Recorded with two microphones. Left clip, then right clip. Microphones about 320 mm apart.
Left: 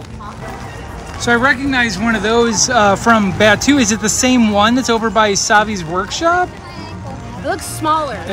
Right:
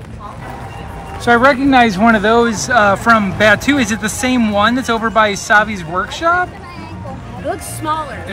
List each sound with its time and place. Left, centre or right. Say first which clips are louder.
1.2 s speech: right 3 dB; centre
7.8 s speech: left 4 dB; left